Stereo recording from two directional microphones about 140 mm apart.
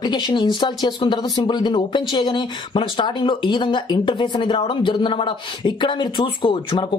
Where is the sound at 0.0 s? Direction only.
30° left (ahead or behind).